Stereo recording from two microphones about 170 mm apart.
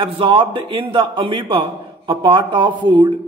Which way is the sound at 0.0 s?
30° right (ahead or behind).